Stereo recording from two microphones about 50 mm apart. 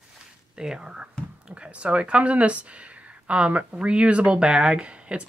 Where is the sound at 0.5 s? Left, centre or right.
Centre.